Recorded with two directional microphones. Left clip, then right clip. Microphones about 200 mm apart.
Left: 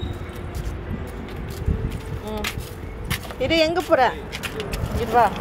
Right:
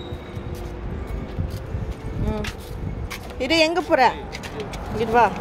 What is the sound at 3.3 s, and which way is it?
Speech, 25° right (ahead or behind).